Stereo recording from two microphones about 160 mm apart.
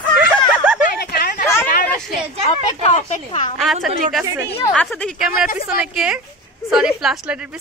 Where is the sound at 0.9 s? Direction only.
75° left (ahead or behind).